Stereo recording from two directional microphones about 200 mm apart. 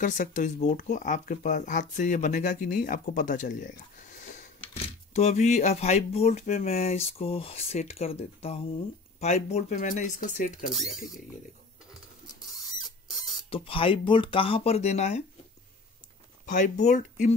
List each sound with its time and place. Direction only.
0.0 s speech: 40° left (ahead or behind)
10.7 s speech: centre (ahead or behind)
13.5 s speech: 25° left (ahead or behind)
16.4 s speech: 40° left (ahead or behind)